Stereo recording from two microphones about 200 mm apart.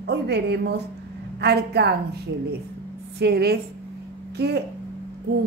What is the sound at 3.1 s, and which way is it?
A woman's voice, 55° right (ahead or behind).